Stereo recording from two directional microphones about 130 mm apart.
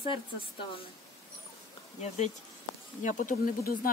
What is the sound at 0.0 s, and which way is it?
Speech, 40° left (ahead or behind).